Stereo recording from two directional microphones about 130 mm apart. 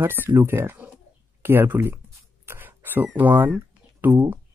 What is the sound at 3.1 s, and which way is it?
Speech, 15° right (ahead or behind).